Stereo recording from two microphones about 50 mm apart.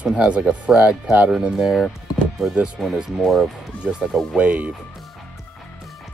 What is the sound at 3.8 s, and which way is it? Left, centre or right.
Speech, right.